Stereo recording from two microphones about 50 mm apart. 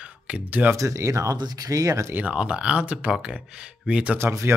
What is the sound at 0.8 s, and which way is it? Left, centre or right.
Speech, right.